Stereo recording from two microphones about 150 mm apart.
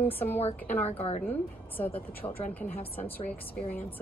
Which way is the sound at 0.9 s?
45° left (ahead or behind).